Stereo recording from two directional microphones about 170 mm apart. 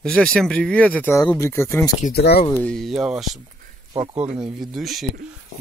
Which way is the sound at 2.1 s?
70° left (ahead or behind).